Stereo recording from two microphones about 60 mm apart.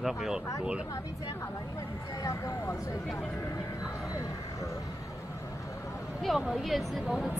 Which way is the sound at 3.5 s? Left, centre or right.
Left.